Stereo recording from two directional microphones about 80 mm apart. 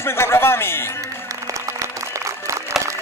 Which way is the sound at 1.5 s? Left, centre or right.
Right.